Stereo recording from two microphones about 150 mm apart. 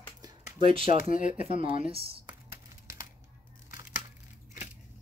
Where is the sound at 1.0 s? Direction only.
60° left (ahead or behind).